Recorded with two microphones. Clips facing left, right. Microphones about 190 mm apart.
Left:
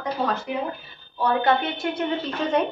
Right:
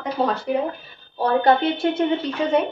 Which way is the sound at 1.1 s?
35° right (ahead or behind).